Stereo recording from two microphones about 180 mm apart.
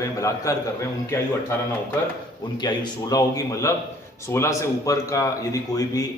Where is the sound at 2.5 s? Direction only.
25° left (ahead or behind).